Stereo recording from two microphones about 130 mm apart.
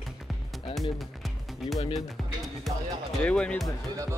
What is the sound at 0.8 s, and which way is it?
Speech, centre (ahead or behind).